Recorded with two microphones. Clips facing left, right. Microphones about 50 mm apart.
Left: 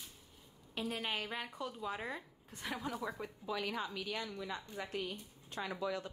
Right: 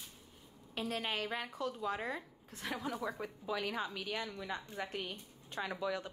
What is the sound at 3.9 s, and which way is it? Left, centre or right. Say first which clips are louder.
A woman's voice: right 1 dB; right.